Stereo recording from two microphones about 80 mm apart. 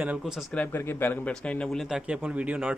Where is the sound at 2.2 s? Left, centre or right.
Centre.